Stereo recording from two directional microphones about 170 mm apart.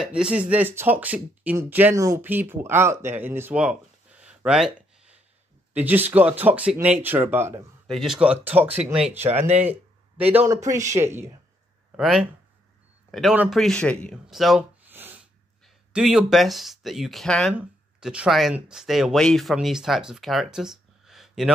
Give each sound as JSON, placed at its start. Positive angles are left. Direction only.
{"t": 0.0, "sound": "speech", "side_deg": -5}
{"t": 7.8, "sound": "speech", "side_deg": 0}
{"t": 9.6, "sound": "a sound", "side_deg": -10}
{"t": 10.3, "sound": "speech", "side_deg": -15}
{"t": 12.0, "sound": "speech", "side_deg": 0}
{"t": 14.9, "sound": "snort", "side_deg": -10}
{"t": 15.6, "sound": "speech", "side_deg": -5}